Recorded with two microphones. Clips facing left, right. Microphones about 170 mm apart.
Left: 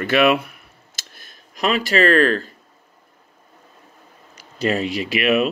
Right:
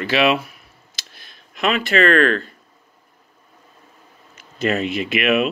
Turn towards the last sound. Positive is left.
turn(degrees=35)  # may be behind; listen again after turning